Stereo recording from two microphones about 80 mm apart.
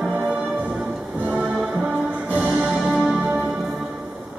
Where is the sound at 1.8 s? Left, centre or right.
Centre.